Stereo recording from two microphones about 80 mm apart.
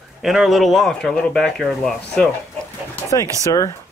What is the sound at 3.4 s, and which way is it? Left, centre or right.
Speech, left.